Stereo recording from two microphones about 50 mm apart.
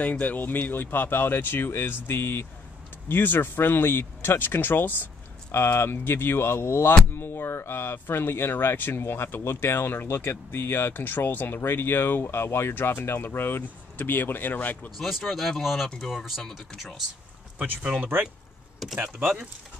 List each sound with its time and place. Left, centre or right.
0.0 s speech: left
5.5 s speech: left
15.0 s speech: centre
18.8 s speech: centre